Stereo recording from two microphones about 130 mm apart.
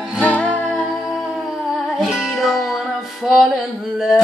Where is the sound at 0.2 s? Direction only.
10° left (ahead or behind).